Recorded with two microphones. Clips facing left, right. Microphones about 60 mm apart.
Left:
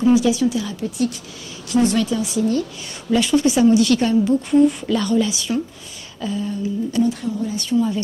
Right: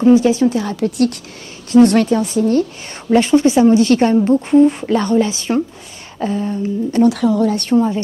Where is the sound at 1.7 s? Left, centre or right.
Right.